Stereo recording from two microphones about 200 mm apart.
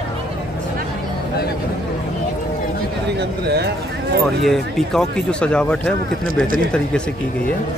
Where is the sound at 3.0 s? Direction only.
55° right (ahead or behind).